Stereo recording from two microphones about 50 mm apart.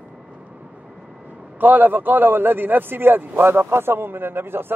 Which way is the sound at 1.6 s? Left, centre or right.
Right.